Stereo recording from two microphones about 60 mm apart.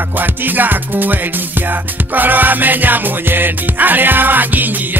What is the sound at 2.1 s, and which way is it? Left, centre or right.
Music, right.